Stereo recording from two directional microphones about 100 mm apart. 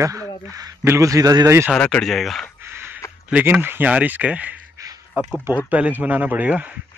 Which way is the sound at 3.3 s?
15° right (ahead or behind).